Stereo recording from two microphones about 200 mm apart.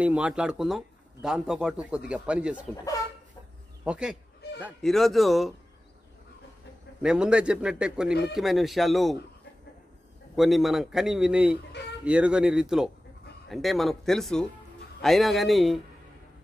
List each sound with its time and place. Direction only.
0.0 s speech: 5° right (ahead or behind)
2.7 s speech: 15° left (ahead or behind)
3.8 s speech: 5° right (ahead or behind)
7.0 s speech: 5° right (ahead or behind)
10.3 s speech: centre (ahead or behind)